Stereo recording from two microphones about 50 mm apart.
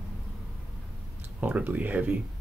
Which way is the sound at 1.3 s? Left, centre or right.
Right.